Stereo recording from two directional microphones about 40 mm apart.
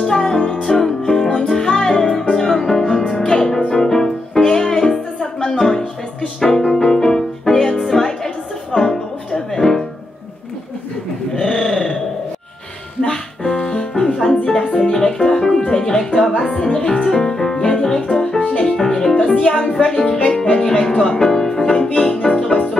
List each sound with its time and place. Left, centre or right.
0.2 s music: centre
3.0 s music: left
11.3 s a sound: centre
13.1 s music: centre
18.0 s music: left